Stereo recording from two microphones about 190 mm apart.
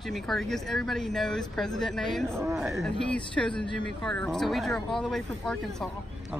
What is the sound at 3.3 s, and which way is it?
Speech, 5° left (ahead or behind).